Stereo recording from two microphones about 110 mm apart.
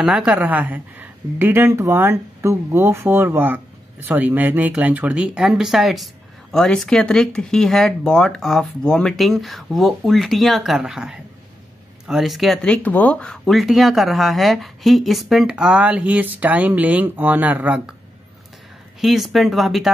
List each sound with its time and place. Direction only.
0.0 s a woman's voice: 5° right (ahead or behind)
12.6 s speech: 10° left (ahead or behind)
13.5 s speech: centre (ahead or behind)
18.9 s speech: centre (ahead or behind)